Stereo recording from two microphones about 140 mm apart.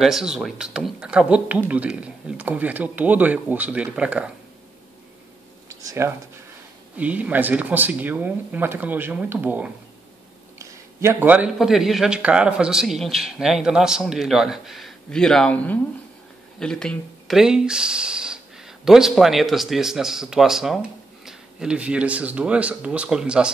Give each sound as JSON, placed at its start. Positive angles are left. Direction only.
{"t": 0.0, "sound": "speech", "side_deg": -5}
{"t": 5.7, "sound": "a sound", "side_deg": -20}
{"t": 7.0, "sound": "a man's voice", "side_deg": -10}